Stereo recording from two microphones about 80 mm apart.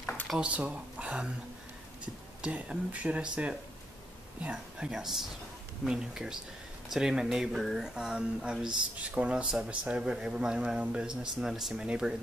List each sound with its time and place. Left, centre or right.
0.4 s speech: centre
2.4 s speech: centre